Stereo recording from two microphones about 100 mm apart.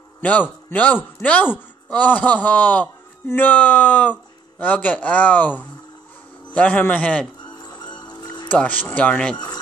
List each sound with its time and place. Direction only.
0.2 s a man's voice: 15° left (ahead or behind)
7.6 s music: 45° left (ahead or behind)
8.5 s a man's voice: 15° left (ahead or behind)